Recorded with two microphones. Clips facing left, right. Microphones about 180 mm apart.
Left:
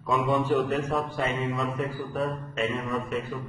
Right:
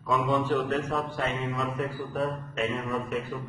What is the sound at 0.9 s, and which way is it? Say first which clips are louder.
A man's voice: left 2 dB; centre (ahead or behind).